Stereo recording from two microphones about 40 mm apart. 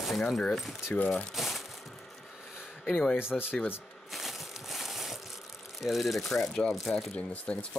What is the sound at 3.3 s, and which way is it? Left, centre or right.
Speech, centre.